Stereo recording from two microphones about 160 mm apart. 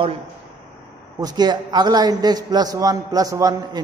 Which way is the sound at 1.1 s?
25° right (ahead or behind).